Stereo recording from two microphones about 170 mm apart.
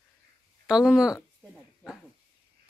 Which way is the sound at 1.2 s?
Centre (ahead or behind).